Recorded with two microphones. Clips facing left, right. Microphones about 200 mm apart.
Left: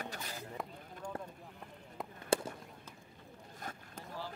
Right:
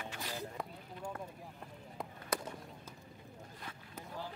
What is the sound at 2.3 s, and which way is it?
Fireworks, 30° left (ahead or behind).